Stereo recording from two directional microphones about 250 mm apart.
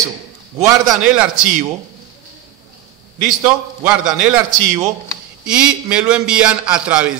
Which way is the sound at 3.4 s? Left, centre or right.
Centre.